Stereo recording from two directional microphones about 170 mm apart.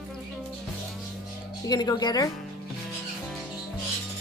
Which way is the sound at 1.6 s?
25° left (ahead or behind).